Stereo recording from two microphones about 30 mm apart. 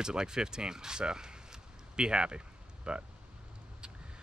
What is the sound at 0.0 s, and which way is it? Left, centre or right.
Speech, right.